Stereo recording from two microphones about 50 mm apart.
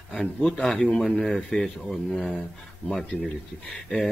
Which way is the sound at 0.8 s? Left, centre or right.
Centre.